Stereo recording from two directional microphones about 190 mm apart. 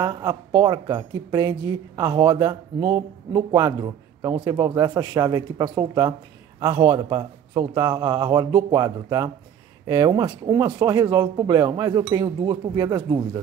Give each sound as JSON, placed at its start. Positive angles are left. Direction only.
{"t": 0.0, "sound": "speech", "side_deg": -25}